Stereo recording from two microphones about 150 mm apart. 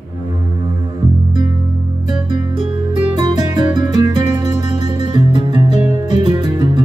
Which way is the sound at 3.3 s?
25° right (ahead or behind).